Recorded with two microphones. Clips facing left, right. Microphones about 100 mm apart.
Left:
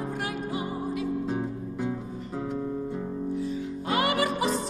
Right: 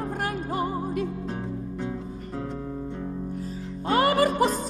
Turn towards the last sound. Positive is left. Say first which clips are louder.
# right 4 dB
turn(degrees=-40)  # may be behind; listen again after turning